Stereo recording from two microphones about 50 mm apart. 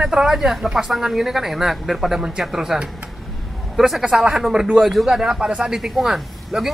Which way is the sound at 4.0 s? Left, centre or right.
Centre.